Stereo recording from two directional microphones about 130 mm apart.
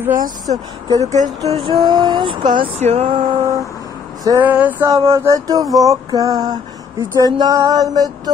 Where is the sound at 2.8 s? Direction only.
50° right (ahead or behind).